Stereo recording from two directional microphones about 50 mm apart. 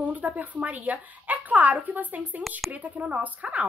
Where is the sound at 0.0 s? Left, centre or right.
Right.